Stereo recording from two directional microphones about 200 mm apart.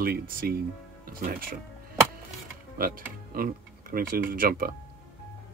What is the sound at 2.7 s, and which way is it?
Speech, 45° right (ahead or behind).